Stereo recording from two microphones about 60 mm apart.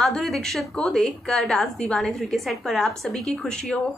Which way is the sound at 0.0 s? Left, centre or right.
Centre.